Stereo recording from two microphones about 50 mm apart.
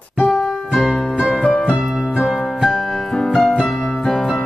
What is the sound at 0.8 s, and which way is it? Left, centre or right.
Music, centre.